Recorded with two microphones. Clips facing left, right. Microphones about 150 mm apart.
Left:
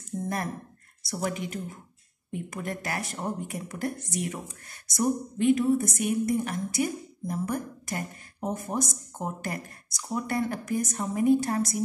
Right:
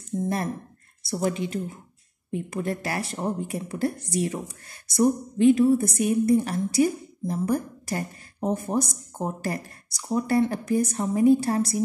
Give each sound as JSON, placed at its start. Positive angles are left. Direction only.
{"t": 1.0, "sound": "speech", "side_deg": -30}